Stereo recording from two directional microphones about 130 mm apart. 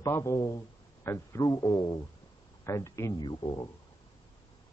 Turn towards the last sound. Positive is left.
turn(degrees=30)  # may be behind; listen again after turning